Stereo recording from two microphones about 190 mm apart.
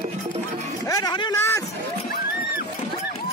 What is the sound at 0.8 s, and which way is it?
Speech, 20° left (ahead or behind).